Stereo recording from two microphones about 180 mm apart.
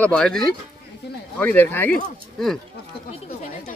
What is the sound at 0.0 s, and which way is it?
Speech, 5° left (ahead or behind).